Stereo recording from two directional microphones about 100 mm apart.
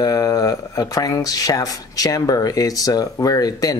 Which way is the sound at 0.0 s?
35° left (ahead or behind).